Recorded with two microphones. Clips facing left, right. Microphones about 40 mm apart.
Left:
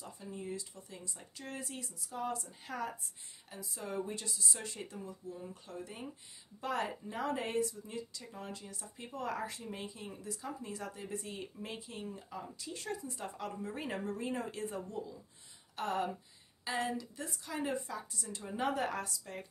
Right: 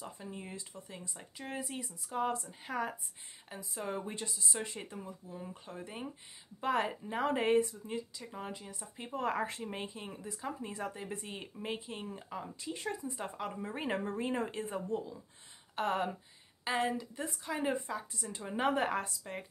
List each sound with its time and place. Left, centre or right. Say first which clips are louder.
0.0 s speech: even; right
2.0 s speech: right 4 dB; right
2.4 s a woman's voice: right 3 dB; right